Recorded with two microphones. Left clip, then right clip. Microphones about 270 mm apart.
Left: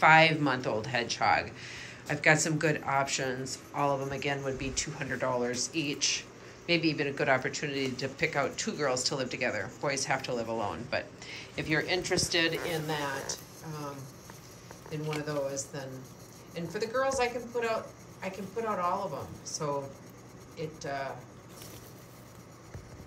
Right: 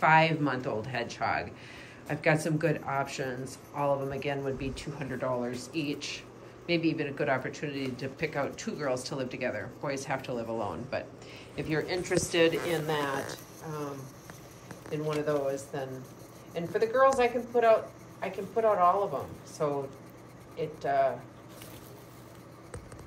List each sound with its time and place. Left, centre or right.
0.0 s speech: centre
14.9 s speech: centre